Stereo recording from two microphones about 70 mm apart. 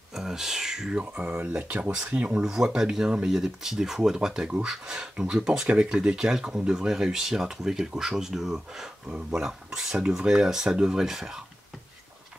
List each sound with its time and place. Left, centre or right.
0.1 s speech: centre